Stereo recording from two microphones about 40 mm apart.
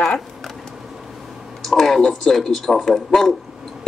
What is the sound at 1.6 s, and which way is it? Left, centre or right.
Speech, centre.